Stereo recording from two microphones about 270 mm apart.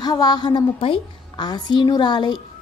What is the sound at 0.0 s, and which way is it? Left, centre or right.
A woman's voice, centre.